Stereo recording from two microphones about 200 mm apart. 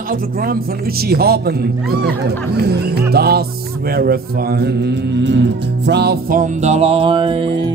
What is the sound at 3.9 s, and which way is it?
Music, 50° right (ahead or behind).